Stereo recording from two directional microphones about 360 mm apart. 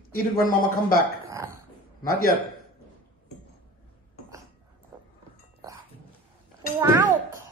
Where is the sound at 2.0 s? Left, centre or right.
Left.